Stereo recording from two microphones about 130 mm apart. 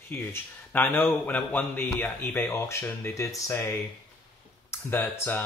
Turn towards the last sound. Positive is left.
turn(degrees=15)  # may be behind; listen again after turning